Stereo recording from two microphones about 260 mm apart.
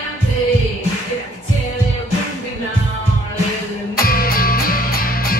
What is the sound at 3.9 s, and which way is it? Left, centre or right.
Music, left.